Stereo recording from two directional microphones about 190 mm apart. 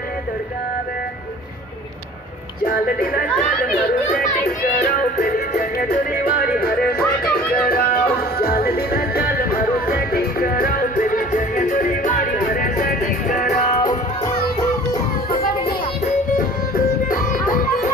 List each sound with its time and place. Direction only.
2.6 s a child's voice: 50° left (ahead or behind)
4.5 s music: 45° left (ahead or behind)
14.6 s music: 15° left (ahead or behind)
15.3 s music: 50° left (ahead or behind)